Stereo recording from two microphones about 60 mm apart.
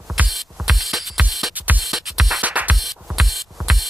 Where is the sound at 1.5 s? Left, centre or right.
Right.